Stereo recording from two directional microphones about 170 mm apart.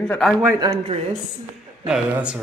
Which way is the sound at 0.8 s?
40° right (ahead or behind).